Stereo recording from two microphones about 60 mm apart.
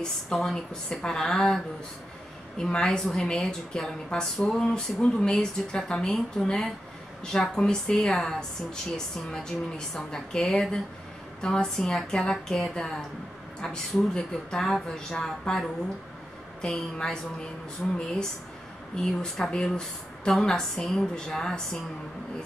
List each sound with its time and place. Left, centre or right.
0.0 s speech: centre
4.4 s a sound: centre
4.6 s speech: centre